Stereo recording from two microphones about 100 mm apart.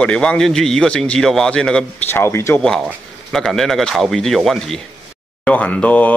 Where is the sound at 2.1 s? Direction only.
25° left (ahead or behind).